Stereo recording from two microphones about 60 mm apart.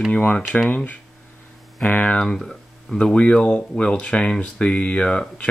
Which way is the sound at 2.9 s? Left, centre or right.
Centre.